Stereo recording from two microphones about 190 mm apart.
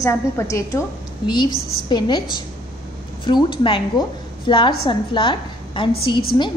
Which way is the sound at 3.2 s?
25° left (ahead or behind).